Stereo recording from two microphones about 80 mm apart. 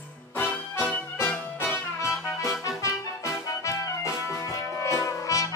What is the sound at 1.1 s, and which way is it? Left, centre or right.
Music, left.